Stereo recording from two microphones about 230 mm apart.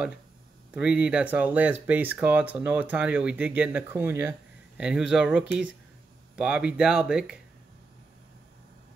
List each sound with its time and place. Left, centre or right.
0.7 s speech: centre